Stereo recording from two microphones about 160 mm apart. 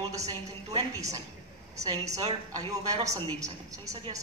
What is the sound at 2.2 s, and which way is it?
A woman's voice, 25° right (ahead or behind).